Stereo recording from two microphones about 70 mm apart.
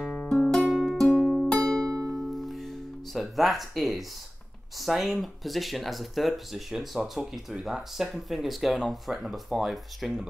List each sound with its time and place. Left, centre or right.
0.3 s music: centre
1.9 s music: right
2.3 s music: centre
4.7 s speech: centre